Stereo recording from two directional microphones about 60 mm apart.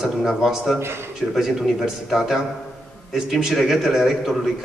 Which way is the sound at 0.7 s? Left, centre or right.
Right.